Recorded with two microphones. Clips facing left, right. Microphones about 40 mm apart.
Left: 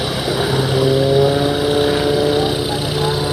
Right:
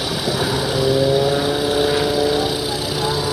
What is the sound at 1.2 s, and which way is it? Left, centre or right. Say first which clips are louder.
Vehicle: left 3 dB; centre.